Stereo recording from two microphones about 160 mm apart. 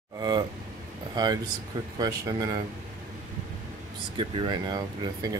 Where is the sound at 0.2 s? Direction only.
25° right (ahead or behind).